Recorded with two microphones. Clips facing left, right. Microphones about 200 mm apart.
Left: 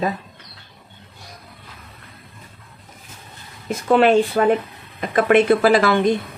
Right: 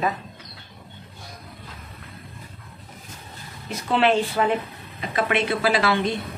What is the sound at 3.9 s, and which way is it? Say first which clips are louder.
A woman's voice: left 6 dB; 45° left (ahead or behind).